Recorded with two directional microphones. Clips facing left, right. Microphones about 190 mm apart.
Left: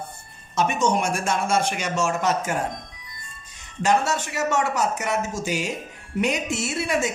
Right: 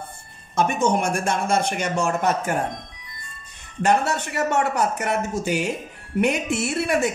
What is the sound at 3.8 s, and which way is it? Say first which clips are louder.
A man's voice: right 1 dB; 60° right (ahead or behind).